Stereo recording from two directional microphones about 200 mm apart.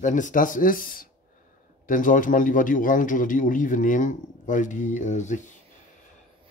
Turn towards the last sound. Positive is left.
turn(degrees=35)  # may be behind; listen again after turning